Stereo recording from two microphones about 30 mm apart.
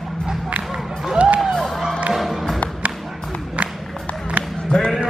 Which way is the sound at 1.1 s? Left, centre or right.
Right.